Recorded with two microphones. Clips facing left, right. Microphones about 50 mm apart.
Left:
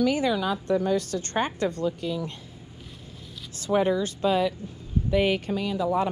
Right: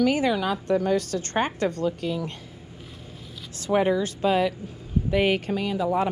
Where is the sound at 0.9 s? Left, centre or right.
Right.